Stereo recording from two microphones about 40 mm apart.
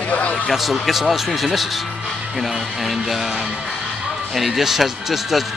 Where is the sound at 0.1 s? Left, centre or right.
Left.